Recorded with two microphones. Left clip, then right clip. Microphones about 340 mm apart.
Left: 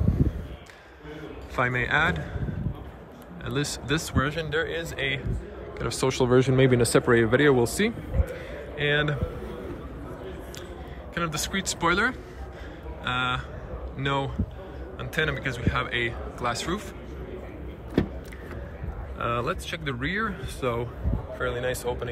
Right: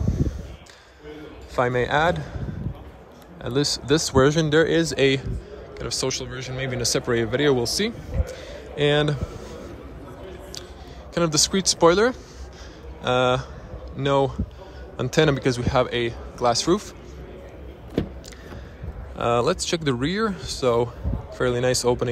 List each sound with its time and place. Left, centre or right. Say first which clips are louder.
1.5 s a man's voice: right 3 dB; centre
3.4 s a man's voice: right 7 dB; centre
5.8 s a man's voice: left 1 dB; centre
11.1 s a man's voice: right 7 dB; centre
19.1 s a man's voice: right 7 dB; centre